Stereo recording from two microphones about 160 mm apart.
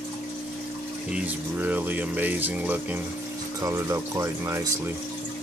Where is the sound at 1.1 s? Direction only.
10° right (ahead or behind).